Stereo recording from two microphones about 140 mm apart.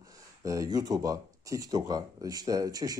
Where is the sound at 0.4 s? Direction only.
25° right (ahead or behind).